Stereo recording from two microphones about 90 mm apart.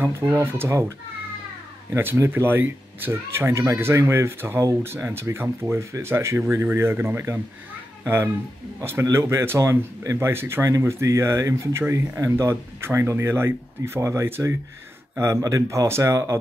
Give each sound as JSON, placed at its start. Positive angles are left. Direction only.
{"t": 0.0, "sound": "speech", "side_deg": -25}